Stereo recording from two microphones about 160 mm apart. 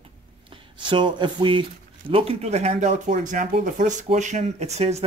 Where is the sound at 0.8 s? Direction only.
30° right (ahead or behind).